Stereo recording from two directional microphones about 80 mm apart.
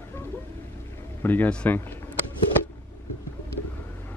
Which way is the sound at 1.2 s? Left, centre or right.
Left.